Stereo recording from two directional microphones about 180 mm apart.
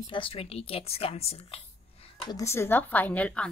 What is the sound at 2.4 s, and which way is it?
A woman's voice, 15° left (ahead or behind).